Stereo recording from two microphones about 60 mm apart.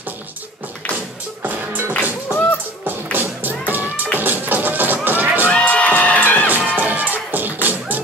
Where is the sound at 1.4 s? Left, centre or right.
Right.